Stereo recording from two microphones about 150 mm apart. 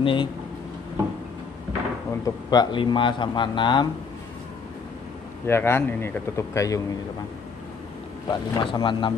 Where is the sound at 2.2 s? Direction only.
30° left (ahead or behind).